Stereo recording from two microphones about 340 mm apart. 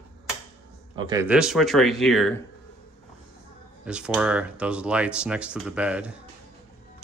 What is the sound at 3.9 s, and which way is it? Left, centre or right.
Speech, centre.